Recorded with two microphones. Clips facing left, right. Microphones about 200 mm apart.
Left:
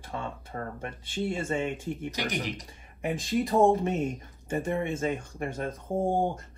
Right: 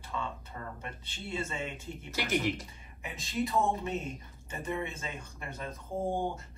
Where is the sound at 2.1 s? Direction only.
15° left (ahead or behind).